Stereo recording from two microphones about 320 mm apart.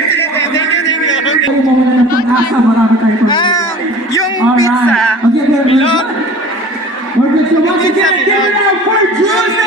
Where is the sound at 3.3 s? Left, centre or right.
Centre.